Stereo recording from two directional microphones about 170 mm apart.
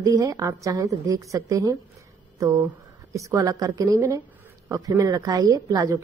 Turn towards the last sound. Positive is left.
turn(degrees=-20)  # may be behind; listen again after turning